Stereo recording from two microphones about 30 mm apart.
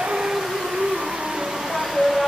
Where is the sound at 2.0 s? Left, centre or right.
Centre.